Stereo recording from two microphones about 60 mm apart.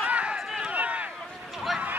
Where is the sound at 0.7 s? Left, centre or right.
Right.